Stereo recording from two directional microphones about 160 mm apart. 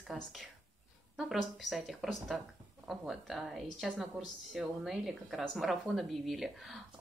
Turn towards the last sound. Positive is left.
turn(degrees=0)  # may be behind; listen again after turning